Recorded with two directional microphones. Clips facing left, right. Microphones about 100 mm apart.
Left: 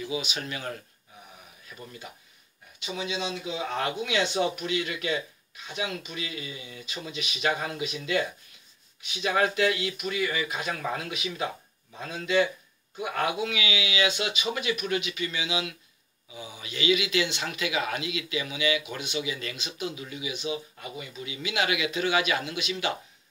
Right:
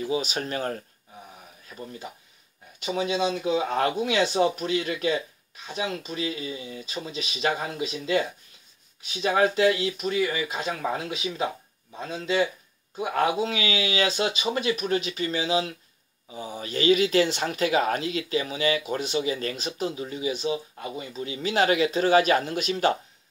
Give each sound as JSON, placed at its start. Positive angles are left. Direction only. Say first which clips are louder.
{"t": 0.0, "sound": "speech", "louder": "right 5 dB", "side_deg": -40}
{"t": 2.8, "sound": "speech", "louder": "right 7 dB", "side_deg": -45}
{"t": 12.0, "sound": "speech", "louder": "even", "side_deg": -30}